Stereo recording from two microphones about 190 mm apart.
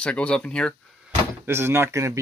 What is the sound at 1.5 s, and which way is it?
Speech, 10° right (ahead or behind).